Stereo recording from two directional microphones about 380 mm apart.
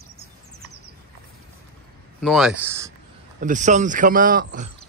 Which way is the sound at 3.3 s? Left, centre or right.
Centre.